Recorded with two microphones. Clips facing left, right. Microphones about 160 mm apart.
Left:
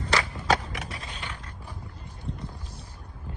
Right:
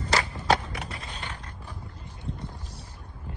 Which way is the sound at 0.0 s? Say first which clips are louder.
Even; 40° right (ahead or behind).